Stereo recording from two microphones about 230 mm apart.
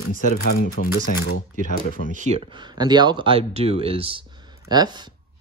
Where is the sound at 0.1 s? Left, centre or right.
Left.